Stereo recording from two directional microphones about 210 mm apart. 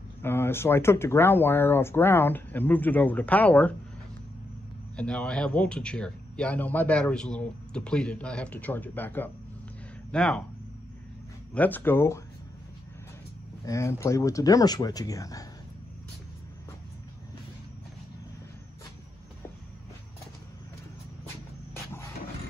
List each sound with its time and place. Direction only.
0.2 s speech: 10° left (ahead or behind)
4.9 s speech: 5° left (ahead or behind)
11.5 s speech: 10° left (ahead or behind)
13.7 s speech: 15° left (ahead or behind)